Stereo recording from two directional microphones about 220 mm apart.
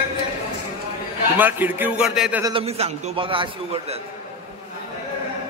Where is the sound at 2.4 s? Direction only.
25° right (ahead or behind).